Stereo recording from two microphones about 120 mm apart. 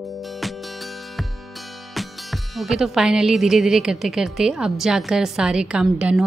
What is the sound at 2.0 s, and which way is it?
A woman's voice, centre (ahead or behind).